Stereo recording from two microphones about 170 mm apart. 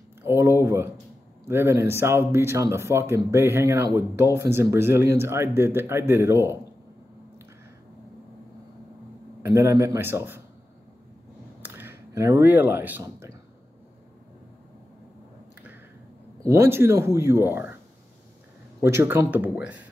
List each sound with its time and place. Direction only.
0.2 s speech: 15° right (ahead or behind)
9.4 s speech: 15° right (ahead or behind)
11.6 s a sound: 15° right (ahead or behind)
16.3 s speech: 15° right (ahead or behind)
18.8 s speech: 15° right (ahead or behind)